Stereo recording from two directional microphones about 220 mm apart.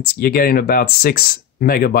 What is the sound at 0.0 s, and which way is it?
Speech, 45° left (ahead or behind).